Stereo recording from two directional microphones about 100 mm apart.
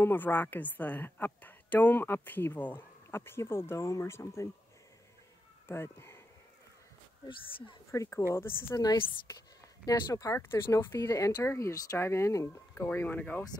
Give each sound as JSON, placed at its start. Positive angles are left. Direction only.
{"t": 0.0, "sound": "a woman's voice", "side_deg": 20}
{"t": 5.7, "sound": "speech", "side_deg": 25}
{"t": 7.2, "sound": "speech", "side_deg": 55}
{"t": 7.9, "sound": "a woman's voice", "side_deg": 30}
{"t": 12.7, "sound": "speech", "side_deg": 20}